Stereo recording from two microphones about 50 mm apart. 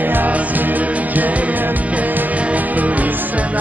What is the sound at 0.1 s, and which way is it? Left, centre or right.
Music, right.